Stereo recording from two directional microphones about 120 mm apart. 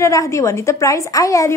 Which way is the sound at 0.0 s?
25° left (ahead or behind).